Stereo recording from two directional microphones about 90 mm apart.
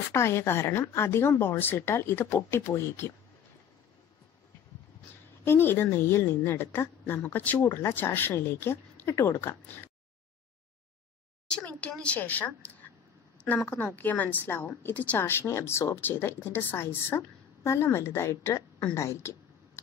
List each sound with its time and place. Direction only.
0.1 s a woman's voice: 30° left (ahead or behind)
5.4 s a woman's voice: 25° left (ahead or behind)
11.4 s a child's voice: 10° left (ahead or behind)
13.7 s a woman's voice: 15° left (ahead or behind); by 18.6 s 35° left (ahead or behind)
18.9 s a sound: 30° left (ahead or behind)